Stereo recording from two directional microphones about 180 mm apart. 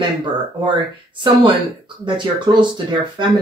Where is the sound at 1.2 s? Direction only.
25° right (ahead or behind).